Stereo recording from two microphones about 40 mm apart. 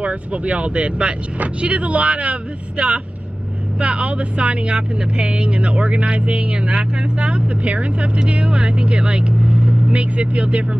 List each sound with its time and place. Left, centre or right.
0.0 s speech: right